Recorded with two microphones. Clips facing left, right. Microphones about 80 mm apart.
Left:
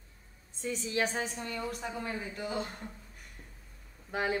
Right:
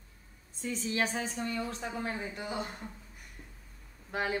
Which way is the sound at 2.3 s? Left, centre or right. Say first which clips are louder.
Left 1 dB; centre.